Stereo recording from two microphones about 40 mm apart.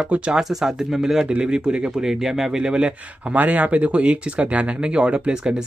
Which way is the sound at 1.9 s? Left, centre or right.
Centre.